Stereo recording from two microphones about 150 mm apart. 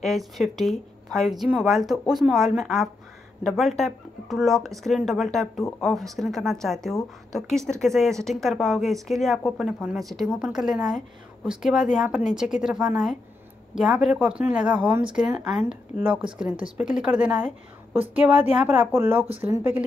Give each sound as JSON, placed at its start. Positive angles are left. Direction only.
{"t": 0.0, "sound": "a woman's voice", "side_deg": 0}